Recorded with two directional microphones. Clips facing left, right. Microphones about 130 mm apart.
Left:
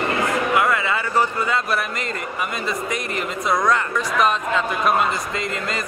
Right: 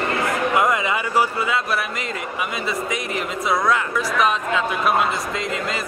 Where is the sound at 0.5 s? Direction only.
15° right (ahead or behind).